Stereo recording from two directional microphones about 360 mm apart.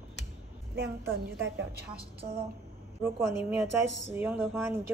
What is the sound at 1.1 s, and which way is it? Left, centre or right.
Music, right.